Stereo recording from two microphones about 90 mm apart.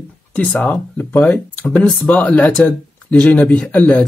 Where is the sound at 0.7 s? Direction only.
20° left (ahead or behind).